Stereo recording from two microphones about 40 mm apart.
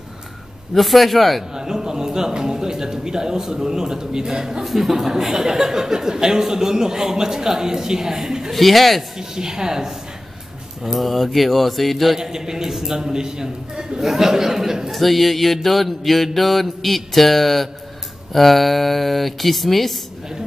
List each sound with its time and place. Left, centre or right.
0.7 s mantra: centre
1.5 s speech: centre
4.6 s speech: centre
8.5 s mantra: centre
9.2 s speech: centre
10.8 s mantra: centre
12.2 s speech: centre
14.9 s mantra: centre